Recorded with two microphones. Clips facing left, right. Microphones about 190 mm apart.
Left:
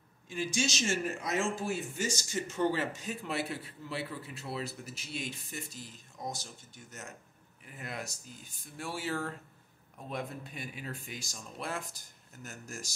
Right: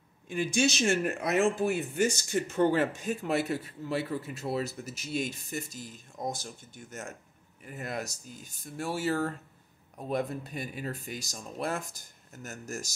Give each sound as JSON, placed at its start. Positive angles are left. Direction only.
{"t": 0.3, "sound": "speech", "side_deg": -60}